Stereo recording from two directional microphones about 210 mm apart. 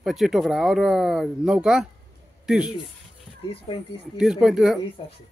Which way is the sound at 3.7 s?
25° left (ahead or behind).